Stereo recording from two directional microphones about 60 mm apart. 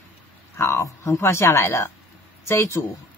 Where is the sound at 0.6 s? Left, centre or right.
Left.